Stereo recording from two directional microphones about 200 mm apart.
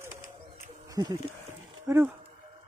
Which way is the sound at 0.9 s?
20° right (ahead or behind).